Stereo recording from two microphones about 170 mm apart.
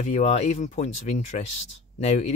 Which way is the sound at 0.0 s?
40° left (ahead or behind).